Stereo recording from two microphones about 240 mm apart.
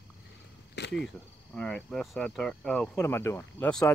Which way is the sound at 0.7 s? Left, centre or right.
Left.